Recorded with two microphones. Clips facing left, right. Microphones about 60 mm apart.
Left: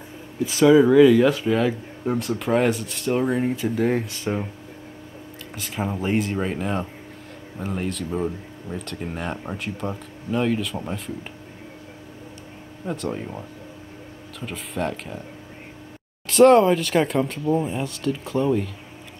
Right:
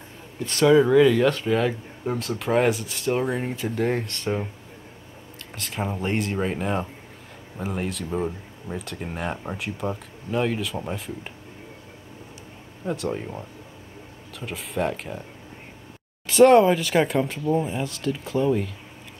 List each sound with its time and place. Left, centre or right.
0.4 s speech: centre
5.6 s speech: centre
12.8 s speech: centre
16.3 s speech: centre